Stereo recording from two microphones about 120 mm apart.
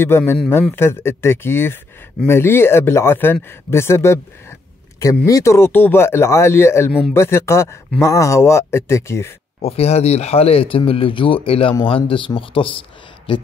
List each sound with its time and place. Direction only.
0.0 s speech: 20° left (ahead or behind)
9.6 s speech: 55° left (ahead or behind)